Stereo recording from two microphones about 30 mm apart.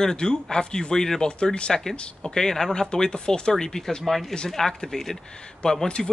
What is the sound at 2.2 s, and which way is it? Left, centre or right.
Speech, centre.